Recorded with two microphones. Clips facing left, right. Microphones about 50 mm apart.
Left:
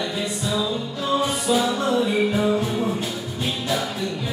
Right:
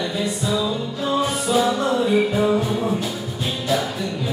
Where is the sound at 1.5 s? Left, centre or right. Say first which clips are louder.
Right 2 dB; right.